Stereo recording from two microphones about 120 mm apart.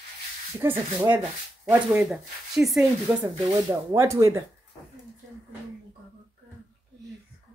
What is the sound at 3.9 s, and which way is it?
Speech, 25° right (ahead or behind).